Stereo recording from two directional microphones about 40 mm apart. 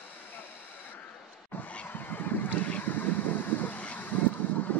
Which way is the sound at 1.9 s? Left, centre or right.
Left.